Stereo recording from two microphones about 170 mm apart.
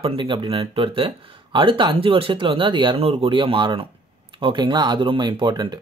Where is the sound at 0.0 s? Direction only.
30° right (ahead or behind).